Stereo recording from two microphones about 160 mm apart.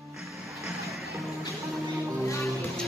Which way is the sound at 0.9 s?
Centre (ahead or behind).